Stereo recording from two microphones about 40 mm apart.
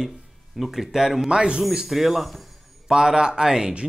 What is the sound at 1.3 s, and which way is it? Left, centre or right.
Speech, right.